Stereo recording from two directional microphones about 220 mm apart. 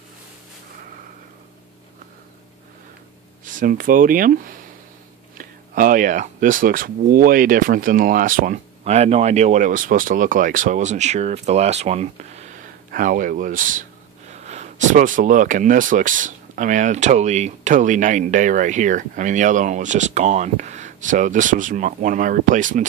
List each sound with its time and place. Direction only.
3.4 s speech: 35° right (ahead or behind)